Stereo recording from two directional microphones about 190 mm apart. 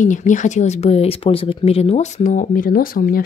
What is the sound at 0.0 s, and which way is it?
Speech, 40° left (ahead or behind).